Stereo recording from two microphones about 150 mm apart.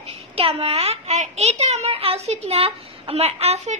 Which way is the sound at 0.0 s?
40° right (ahead or behind).